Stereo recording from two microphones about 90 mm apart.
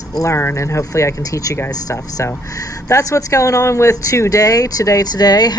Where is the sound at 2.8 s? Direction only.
35° left (ahead or behind).